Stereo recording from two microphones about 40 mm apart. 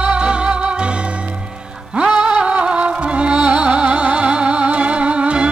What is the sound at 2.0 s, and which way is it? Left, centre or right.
Music, centre.